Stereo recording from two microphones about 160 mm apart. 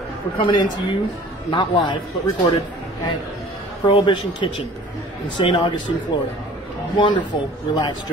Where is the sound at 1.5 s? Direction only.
30° left (ahead or behind).